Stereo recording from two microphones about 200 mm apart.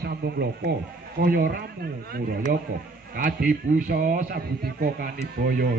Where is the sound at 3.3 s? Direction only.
45° right (ahead or behind).